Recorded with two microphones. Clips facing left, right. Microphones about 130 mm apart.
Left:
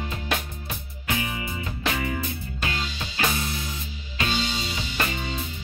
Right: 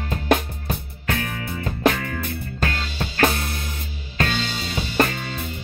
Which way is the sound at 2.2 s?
55° right (ahead or behind).